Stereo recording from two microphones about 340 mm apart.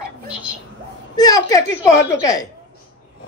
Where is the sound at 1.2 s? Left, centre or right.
Centre.